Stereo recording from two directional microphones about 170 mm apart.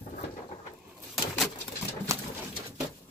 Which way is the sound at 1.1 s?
Centre (ahead or behind).